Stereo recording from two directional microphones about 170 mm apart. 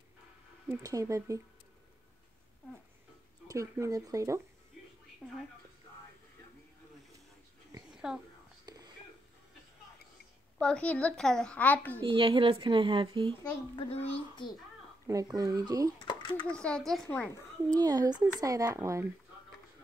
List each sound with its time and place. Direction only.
0.7 s speech: 20° right (ahead or behind)
3.4 s speech: 15° right (ahead or behind)
5.2 s a child's voice: 5° right (ahead or behind)
7.9 s a sound: 5° right (ahead or behind)
8.6 s a sound: 20° right (ahead or behind)
10.6 s a woman's voice: 5° left (ahead or behind)
12.0 s a child's voice: 30° right (ahead or behind)
13.4 s a child's voice: 35° left (ahead or behind)
15.0 s speech: 20° right (ahead or behind)
16.1 s a sound: 30° left (ahead or behind)
16.4 s a child's voice: 5° left (ahead or behind)
17.7 s speech: 20° right (ahead or behind)